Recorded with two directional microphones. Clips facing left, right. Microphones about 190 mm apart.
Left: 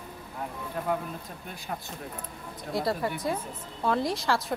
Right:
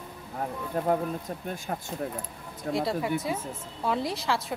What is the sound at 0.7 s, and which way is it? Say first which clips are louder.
Speech: right 5 dB; 35° right (ahead or behind).